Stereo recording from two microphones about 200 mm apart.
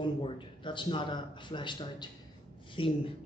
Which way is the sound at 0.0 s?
25° left (ahead or behind).